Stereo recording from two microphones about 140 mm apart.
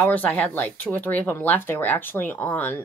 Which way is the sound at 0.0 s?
10° left (ahead or behind).